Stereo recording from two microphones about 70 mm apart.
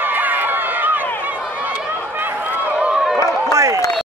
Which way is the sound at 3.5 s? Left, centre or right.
Right.